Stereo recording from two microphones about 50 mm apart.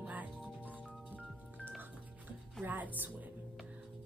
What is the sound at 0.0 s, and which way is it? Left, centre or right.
Chirp tone, right.